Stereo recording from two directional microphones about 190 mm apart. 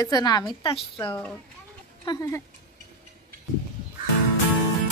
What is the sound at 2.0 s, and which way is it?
Speech, 20° left (ahead or behind).